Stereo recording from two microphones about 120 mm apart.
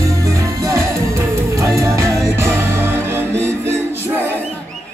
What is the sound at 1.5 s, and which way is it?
Music, 25° right (ahead or behind).